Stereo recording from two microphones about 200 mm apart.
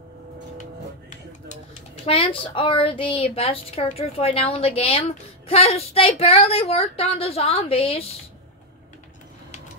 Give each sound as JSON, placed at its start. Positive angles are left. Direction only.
{"t": 2.0, "sound": "a woman's voice", "side_deg": 25}